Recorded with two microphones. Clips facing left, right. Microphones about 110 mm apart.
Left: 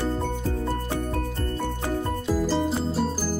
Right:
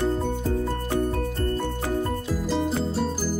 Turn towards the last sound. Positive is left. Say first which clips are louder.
# even
turn(degrees=5)  # may be behind; listen again after turning